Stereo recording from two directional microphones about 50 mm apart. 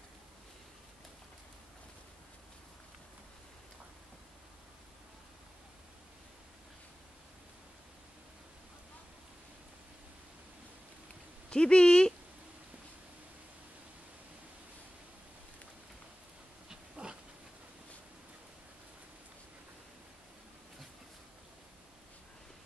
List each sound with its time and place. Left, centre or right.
11.5 s speech: left
16.6 s dog: centre